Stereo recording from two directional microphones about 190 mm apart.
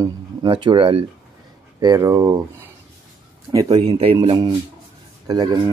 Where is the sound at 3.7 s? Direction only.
30° right (ahead or behind).